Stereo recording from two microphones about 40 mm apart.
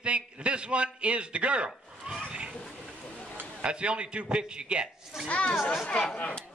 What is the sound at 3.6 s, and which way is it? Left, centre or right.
A man's voice, right.